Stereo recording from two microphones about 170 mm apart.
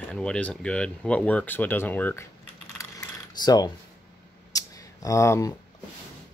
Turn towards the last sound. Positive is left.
turn(degrees=20)  # may be behind; listen again after turning